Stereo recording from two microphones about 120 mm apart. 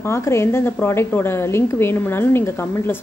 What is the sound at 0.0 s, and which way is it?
Speech, 20° left (ahead or behind).